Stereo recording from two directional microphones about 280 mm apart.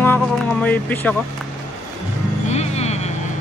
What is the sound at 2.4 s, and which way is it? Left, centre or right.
Music, left.